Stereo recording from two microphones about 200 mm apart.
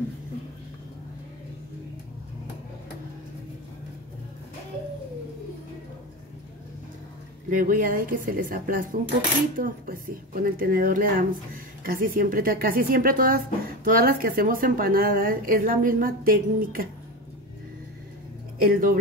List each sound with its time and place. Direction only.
7.4 s speech: 45° right (ahead or behind)
18.6 s speech: 45° right (ahead or behind)